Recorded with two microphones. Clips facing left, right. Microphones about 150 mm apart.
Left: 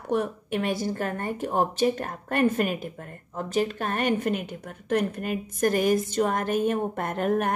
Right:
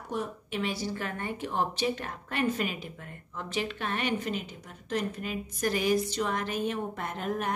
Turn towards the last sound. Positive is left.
turn(degrees=55)  # may be behind; listen again after turning